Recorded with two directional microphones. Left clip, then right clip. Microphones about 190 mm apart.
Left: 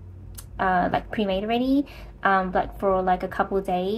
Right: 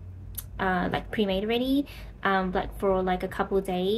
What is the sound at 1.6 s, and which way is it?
Speech, 25° left (ahead or behind).